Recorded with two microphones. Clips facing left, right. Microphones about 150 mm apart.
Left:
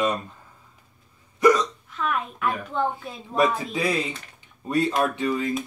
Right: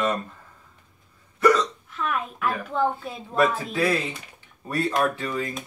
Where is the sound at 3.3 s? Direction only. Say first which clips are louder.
Even; 15° left (ahead or behind).